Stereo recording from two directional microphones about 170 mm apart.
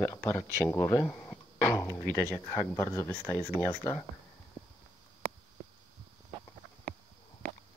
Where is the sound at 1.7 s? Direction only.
20° left (ahead or behind).